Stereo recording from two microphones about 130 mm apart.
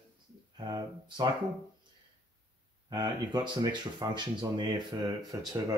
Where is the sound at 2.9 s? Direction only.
35° right (ahead or behind).